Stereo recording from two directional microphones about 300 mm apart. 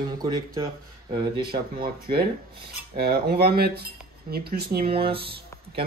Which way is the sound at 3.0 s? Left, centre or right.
Right.